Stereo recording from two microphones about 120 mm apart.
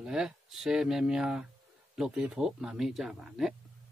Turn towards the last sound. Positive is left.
turn(degrees=-5)  # may be behind; listen again after turning